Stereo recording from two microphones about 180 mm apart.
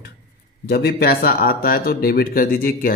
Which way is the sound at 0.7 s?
60° left (ahead or behind).